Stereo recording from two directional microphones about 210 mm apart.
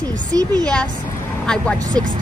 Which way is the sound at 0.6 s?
5° left (ahead or behind).